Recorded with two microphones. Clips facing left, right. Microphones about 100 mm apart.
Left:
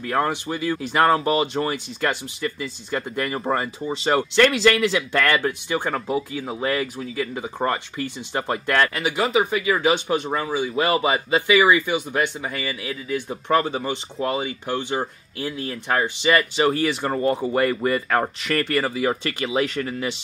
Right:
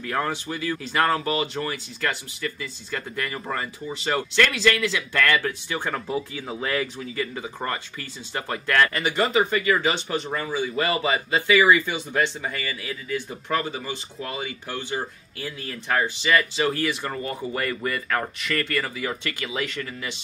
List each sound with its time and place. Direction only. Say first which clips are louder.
0.1 s speech: left 4 dB; 25° left (ahead or behind)
7.4 s speech: left 6 dB; 20° left (ahead or behind)
8.9 s speech: left 1 dB; 5° left (ahead or behind); by 17.1 s 25° left (ahead or behind)
17.1 s speech: left 8 dB; 35° left (ahead or behind)